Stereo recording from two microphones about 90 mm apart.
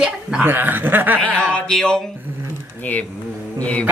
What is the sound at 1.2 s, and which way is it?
Speech, 15° left (ahead or behind).